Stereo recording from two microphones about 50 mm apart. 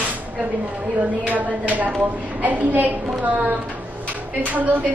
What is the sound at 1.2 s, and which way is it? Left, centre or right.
A man's voice, right.